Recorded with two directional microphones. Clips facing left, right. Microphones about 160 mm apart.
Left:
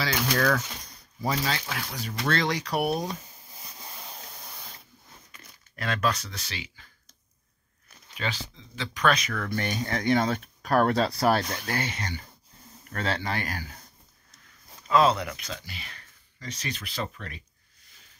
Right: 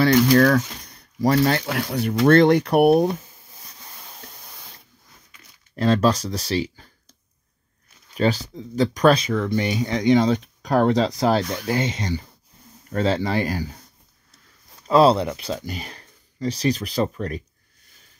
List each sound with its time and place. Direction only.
1.2 s speech: 60° right (ahead or behind)
5.8 s speech: 30° right (ahead or behind)
8.1 s speech: 40° right (ahead or behind)
9.4 s speech: 15° right (ahead or behind)
14.9 s speech: 35° right (ahead or behind)
15.6 s speech: 40° right (ahead or behind)